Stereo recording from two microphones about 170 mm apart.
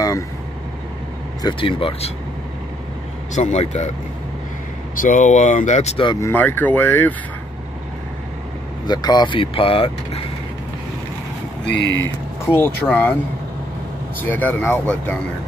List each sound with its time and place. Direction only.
1.4 s speech: 30° left (ahead or behind)
3.3 s speech: 40° left (ahead or behind)
5.0 s speech: 50° left (ahead or behind)
6.2 s speech: 10° left (ahead or behind)
8.8 s speech: 25° left (ahead or behind)
11.6 s speech: 85° left
12.0 s speech: 15° left (ahead or behind)
14.2 s speech: 10° left (ahead or behind)